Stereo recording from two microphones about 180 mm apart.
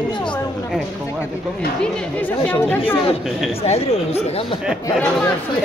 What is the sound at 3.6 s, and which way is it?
Speech, 35° left (ahead or behind).